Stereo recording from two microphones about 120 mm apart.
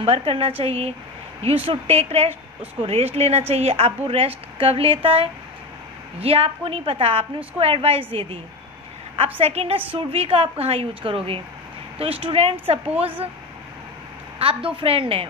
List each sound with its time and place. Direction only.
0.0 s a woman's voice: 55° right (ahead or behind)
14.4 s a woman's voice: 50° right (ahead or behind)